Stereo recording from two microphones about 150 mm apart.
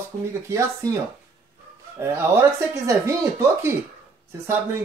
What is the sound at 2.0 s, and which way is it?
Speech, 15° right (ahead or behind).